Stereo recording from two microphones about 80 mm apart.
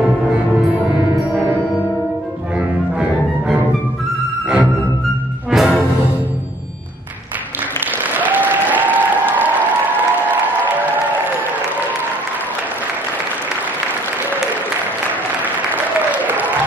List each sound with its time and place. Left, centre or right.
0.0 s music: centre
5.5 s music: centre
8.0 s applause: right
15.4 s applause: right